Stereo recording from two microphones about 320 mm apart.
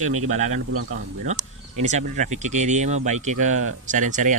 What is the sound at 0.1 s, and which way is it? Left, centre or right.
Speech, right.